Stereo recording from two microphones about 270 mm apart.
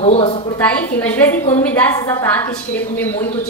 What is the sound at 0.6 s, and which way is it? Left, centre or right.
A woman's voice, centre.